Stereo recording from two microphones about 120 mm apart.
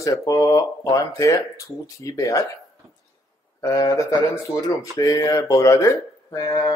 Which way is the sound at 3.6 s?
30° left (ahead or behind).